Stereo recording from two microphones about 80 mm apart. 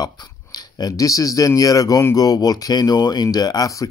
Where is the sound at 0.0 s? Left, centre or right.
Left.